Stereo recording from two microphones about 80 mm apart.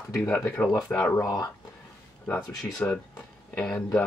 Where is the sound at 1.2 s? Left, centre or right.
Left.